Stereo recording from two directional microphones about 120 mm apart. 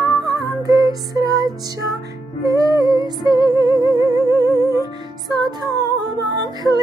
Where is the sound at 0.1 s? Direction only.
30° right (ahead or behind).